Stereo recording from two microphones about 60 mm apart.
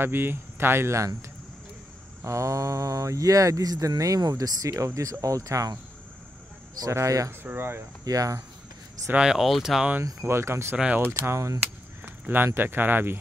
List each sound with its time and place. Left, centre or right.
0.0 s speech: right
2.2 s speech: right
6.8 s speech: right
7.4 s speech: right
8.0 s speech: right
9.2 s speech: centre
10.2 s speech: right
11.3 s speech: right
12.0 s a sound: right
12.5 s speech: right